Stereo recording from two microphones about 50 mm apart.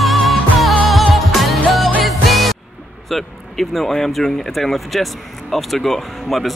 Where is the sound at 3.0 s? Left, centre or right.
Centre.